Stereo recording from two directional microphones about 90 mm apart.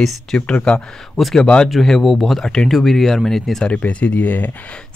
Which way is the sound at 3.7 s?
15° left (ahead or behind).